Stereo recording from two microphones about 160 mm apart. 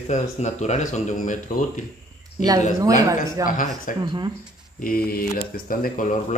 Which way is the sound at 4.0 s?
25° right (ahead or behind).